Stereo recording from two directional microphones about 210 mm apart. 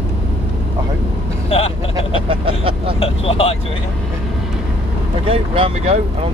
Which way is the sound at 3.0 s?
25° left (ahead or behind).